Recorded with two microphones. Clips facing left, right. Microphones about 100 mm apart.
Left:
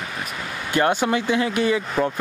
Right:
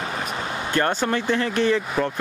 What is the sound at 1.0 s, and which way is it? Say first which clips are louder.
Speech: left 2 dB; 10° left (ahead or behind).